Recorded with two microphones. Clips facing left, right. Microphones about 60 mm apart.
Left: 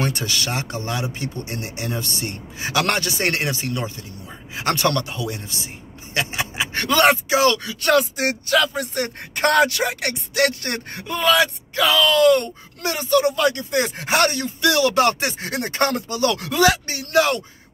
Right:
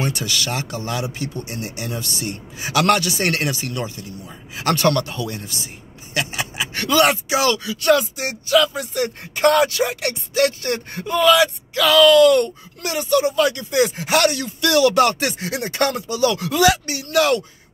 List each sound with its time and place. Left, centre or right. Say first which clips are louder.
0.0 s speech: even; left
11.1 s speech: right 3 dB; left
15.4 s speech: even; left